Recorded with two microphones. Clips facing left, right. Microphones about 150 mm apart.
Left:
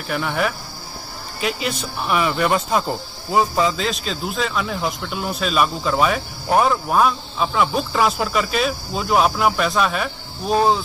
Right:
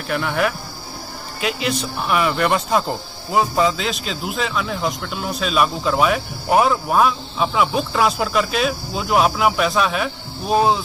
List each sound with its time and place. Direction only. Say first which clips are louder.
0.1 s speech: right 1 dB; centre (ahead or behind)